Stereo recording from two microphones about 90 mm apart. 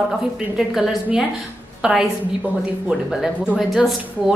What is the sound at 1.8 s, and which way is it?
Speech, 10° right (ahead or behind).